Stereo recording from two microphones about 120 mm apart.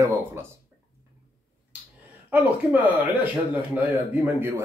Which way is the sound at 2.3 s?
15° right (ahead or behind).